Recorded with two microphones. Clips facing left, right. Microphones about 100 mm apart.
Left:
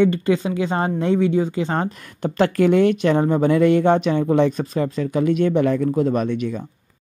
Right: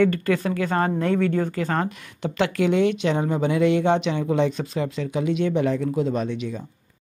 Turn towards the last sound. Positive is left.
turn(degrees=55)  # may be behind; listen again after turning